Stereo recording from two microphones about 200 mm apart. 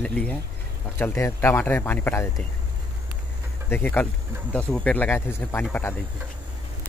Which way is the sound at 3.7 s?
10° left (ahead or behind).